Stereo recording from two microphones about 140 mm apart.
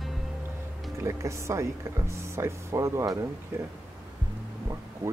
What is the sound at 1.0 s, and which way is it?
Speech, 20° right (ahead or behind).